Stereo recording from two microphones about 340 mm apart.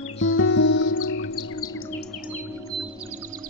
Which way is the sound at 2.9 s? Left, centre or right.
Right.